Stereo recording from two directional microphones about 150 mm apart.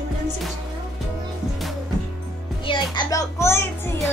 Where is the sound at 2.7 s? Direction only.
25° left (ahead or behind).